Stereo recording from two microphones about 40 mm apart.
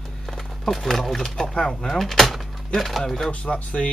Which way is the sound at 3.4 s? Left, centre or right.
Left.